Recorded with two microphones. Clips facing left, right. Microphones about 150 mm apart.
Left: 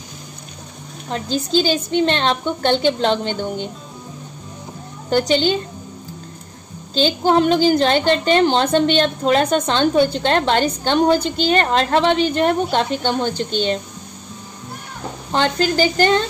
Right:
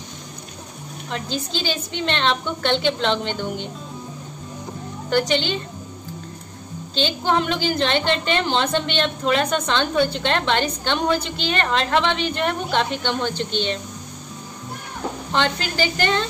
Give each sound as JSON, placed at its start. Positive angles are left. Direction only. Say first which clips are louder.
{"t": 1.1, "sound": "a woman's voice", "louder": "left 8 dB", "side_deg": 40}
{"t": 5.3, "sound": "a woman's voice", "louder": "left 5 dB", "side_deg": 40}
{"t": 6.9, "sound": "a woman's voice", "louder": "left 5 dB", "side_deg": 40}
{"t": 15.3, "sound": "a woman's voice", "louder": "left 6 dB", "side_deg": 40}